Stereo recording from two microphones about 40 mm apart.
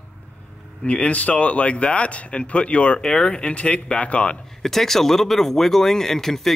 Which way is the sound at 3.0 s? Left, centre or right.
Centre.